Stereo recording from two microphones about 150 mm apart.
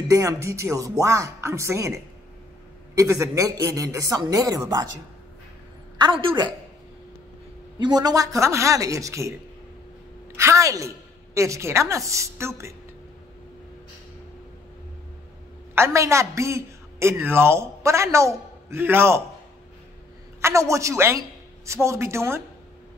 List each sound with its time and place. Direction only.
0.1 s a woman's voice: 20° right (ahead or behind)
3.0 s a woman's voice: 20° right (ahead or behind)
5.9 s a woman's voice: 35° right (ahead or behind)
7.8 s a woman's voice: 25° right (ahead or behind)
10.3 s a woman's voice: 20° right (ahead or behind)
15.7 s a man's voice: 20° right (ahead or behind)
20.4 s a woman's voice: 20° right (ahead or behind)